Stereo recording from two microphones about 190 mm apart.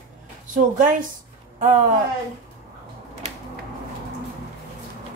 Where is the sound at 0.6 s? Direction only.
45° right (ahead or behind).